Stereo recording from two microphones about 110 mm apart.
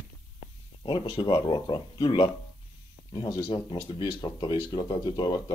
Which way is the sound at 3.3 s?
40° left (ahead or behind).